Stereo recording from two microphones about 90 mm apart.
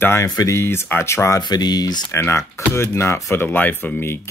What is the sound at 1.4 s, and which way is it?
Speech, 50° left (ahead or behind).